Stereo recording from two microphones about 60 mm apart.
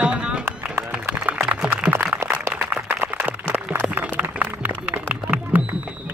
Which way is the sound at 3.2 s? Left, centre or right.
Right.